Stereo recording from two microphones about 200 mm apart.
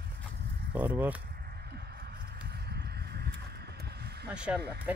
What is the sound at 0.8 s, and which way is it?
Speech, 10° right (ahead or behind).